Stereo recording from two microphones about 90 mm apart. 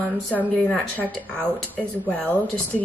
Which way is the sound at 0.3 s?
15° left (ahead or behind).